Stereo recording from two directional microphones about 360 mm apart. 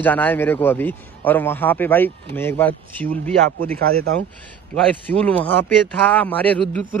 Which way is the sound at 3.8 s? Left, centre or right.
Right.